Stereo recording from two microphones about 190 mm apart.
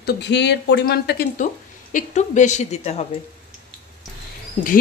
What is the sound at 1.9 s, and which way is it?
A woman's voice, 40° left (ahead or behind).